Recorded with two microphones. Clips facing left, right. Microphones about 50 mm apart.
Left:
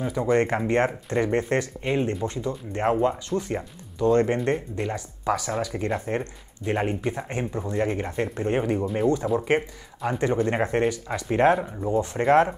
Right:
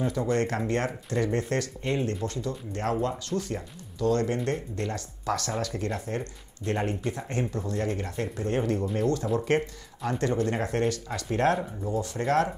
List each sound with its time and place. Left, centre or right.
0.0 s speech: centre
4.5 s speech: centre
6.6 s speech: centre
8.9 s speech: centre